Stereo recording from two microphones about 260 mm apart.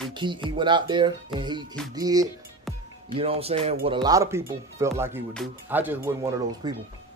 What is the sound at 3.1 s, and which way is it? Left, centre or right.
Speech, right.